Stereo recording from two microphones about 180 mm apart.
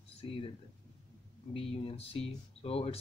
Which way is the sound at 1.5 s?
30° left (ahead or behind).